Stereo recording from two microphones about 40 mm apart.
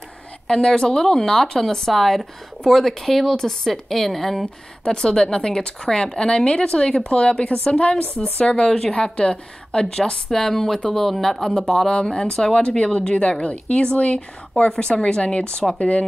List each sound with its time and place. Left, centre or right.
0.5 s a woman's voice: centre
4.8 s a woman's voice: centre
8.9 s a woman's voice: left; by 11.9 s centre
11.9 s a woman's voice: centre